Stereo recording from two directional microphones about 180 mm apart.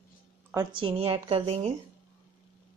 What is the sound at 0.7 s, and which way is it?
Speech, 30° right (ahead or behind).